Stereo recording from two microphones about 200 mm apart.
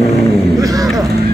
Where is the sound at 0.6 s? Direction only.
15° right (ahead or behind).